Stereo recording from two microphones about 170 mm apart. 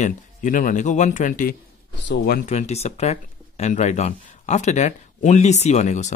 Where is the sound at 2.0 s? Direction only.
65° left (ahead or behind).